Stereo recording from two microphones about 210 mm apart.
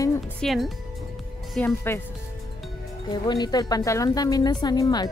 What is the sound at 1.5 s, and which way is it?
Speech, 10° left (ahead or behind).